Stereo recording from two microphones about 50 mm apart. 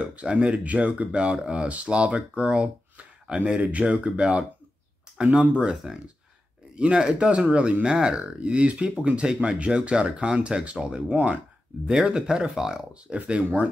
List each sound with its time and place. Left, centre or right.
0.0 s speech: right
13.1 s speech: right